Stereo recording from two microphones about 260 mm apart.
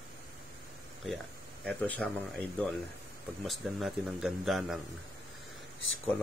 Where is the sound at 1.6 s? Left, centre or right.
Centre.